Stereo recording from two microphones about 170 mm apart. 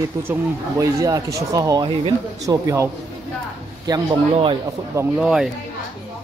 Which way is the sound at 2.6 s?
15° right (ahead or behind).